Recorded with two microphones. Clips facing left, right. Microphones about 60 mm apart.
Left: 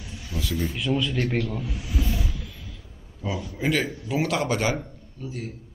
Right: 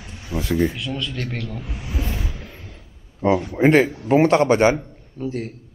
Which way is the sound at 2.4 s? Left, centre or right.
Right.